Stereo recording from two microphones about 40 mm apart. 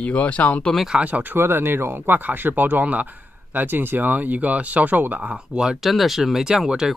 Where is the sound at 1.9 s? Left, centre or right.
Right.